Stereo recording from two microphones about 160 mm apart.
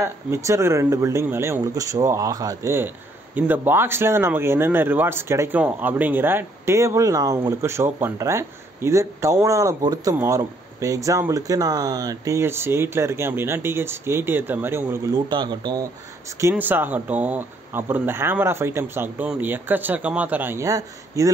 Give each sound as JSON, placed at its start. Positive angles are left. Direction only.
{"t": 0.0, "sound": "speech", "side_deg": -15}
{"t": 15.2, "sound": "speech", "side_deg": -30}
{"t": 16.3, "sound": "speech", "side_deg": -15}